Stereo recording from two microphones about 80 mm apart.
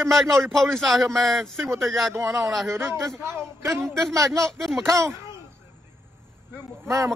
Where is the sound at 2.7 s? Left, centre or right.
Right.